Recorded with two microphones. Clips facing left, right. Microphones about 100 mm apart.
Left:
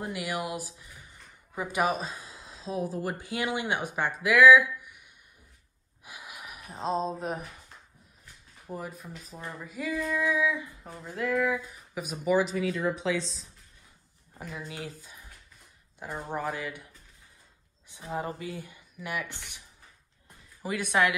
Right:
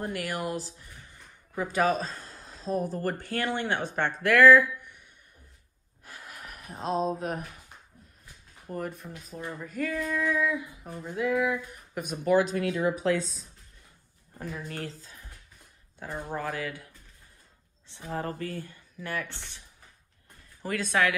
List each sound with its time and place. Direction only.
0.0 s speech: 5° left (ahead or behind)
6.0 s gasp: 10° left (ahead or behind)
8.7 s a sound: 5° left (ahead or behind)
14.7 s speech: 10° left (ahead or behind)
20.6 s speech: 15° left (ahead or behind)